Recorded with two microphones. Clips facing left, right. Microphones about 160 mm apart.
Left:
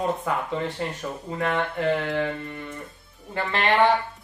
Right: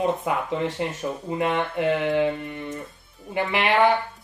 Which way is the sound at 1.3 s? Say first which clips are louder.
Right 1 dB; 20° right (ahead or behind).